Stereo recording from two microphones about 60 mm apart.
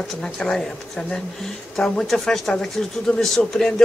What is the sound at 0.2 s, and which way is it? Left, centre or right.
A woman's voice, centre.